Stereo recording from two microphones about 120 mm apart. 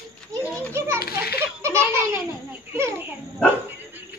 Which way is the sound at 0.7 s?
20° right (ahead or behind).